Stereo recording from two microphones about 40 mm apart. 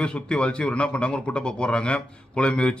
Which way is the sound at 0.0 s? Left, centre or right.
Left.